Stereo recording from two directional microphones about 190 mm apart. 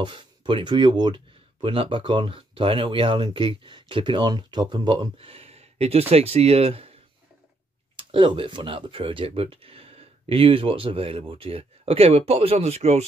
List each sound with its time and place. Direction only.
0.0 s speech: 25° right (ahead or behind)